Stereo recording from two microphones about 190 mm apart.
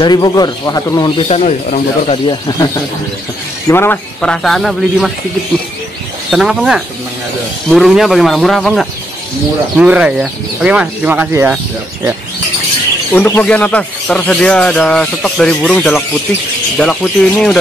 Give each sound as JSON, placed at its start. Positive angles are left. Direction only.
{"t": 0.0, "sound": "speech", "side_deg": 20}
{"t": 2.2, "sound": "speech", "side_deg": 20}
{"t": 6.3, "sound": "speech", "side_deg": 0}
{"t": 13.1, "sound": "speech", "side_deg": 10}